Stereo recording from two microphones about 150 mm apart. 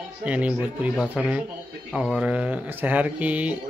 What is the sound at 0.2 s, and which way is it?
Speech, 10° right (ahead or behind).